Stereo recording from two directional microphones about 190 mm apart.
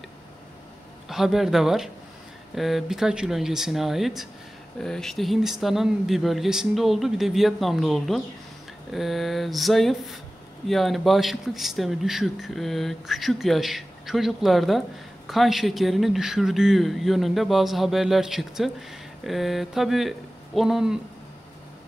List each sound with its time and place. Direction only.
1.0 s speech: centre (ahead or behind)